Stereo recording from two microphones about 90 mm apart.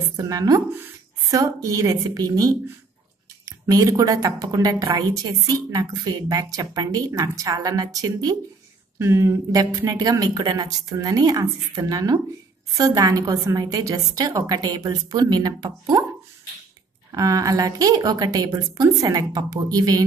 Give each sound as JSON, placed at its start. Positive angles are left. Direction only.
{"t": 0.2, "sound": "a woman's voice", "side_deg": -40}
{"t": 8.9, "sound": "speech", "side_deg": -30}
{"t": 17.1, "sound": "speech", "side_deg": -40}